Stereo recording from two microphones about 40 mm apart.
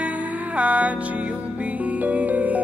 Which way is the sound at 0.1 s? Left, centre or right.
Right.